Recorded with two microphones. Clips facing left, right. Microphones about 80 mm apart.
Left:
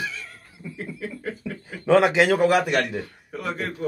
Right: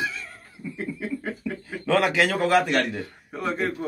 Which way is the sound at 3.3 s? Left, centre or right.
Right.